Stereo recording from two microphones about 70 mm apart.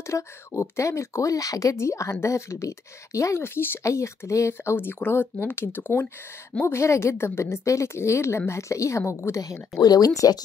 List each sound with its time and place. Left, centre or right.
0.0 s a woman's voice: left
3.8 s a woman's voice: left
6.6 s a woman's voice: left
9.4 s speech: left